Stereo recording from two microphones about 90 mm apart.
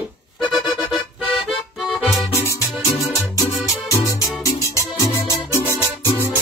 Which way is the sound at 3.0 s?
40° left (ahead or behind).